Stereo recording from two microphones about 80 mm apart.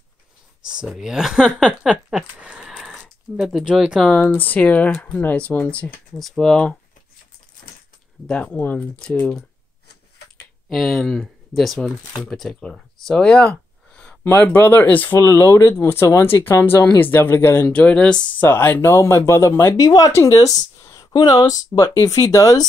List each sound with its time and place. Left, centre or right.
0.8 s speech: centre
2.7 s a sound: centre
4.1 s speech: left
6.1 s speech: centre
8.3 s speech: centre
10.7 s speech: centre
14.2 s speech: left
15.1 s speech: left
17.7 s speech: centre
18.4 s speech: left
19.8 s speech: left
21.1 s speech: left
21.4 s speech: left